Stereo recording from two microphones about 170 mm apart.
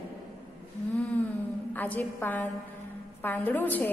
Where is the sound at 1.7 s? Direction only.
10° left (ahead or behind).